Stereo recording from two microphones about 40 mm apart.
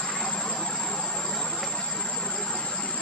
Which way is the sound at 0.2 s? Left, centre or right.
Left.